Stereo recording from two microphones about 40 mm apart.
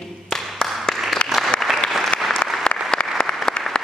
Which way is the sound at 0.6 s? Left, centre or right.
Centre.